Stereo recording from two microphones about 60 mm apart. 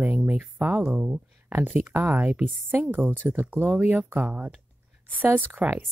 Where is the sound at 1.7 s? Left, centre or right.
Right.